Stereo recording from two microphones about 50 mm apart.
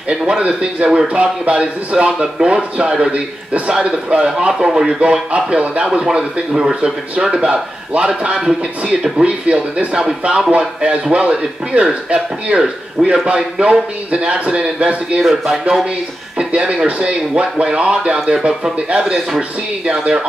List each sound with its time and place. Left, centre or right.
0.1 s a man's voice: centre
5.9 s a man's voice: centre
15.2 s speech: centre
16.3 s a man's voice: centre